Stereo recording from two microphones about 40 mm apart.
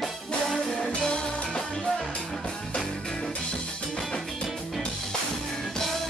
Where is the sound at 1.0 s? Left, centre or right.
Left.